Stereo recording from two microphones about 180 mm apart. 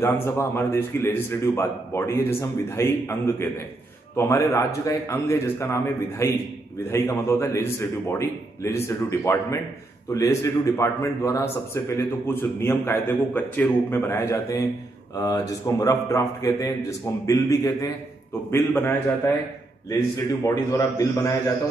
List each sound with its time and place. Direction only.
0.0 s a man's voice: 15° left (ahead or behind)
20.4 s a man's voice: 15° left (ahead or behind)